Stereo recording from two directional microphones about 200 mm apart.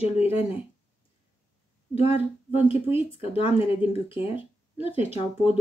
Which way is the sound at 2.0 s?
30° left (ahead or behind).